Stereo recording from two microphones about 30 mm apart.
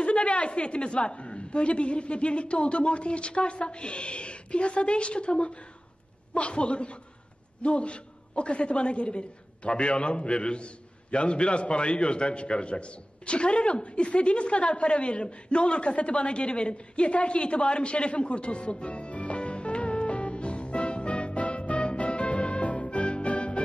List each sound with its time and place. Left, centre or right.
0.0 s a woman's voice: left